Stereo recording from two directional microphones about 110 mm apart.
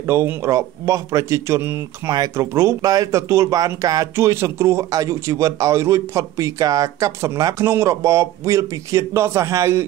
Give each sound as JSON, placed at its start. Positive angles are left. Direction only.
{"t": 0.0, "sound": "speech", "side_deg": -20}